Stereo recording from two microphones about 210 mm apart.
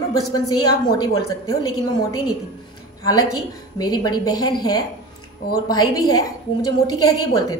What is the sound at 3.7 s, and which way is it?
A woman's voice, 20° left (ahead or behind).